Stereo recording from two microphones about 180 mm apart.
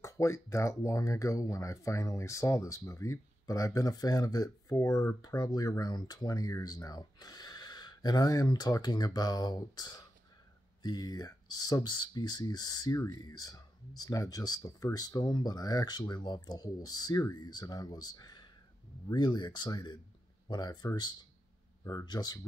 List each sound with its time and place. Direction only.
0.0 s speech: 15° left (ahead or behind)